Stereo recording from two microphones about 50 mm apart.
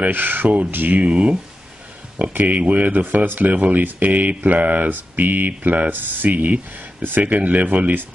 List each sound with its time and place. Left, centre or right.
0.0 s speech: right
1.0 s speech: right